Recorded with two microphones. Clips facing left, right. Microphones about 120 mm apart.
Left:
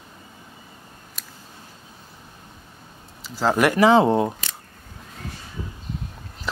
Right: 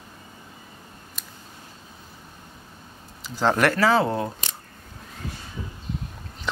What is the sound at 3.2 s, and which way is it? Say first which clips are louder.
Speech: left 1 dB; 5° left (ahead or behind).